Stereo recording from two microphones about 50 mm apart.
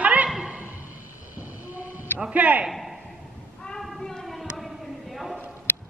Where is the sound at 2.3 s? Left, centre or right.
Right.